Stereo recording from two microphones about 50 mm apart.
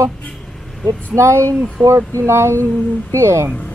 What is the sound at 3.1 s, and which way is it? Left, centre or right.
Speech, right.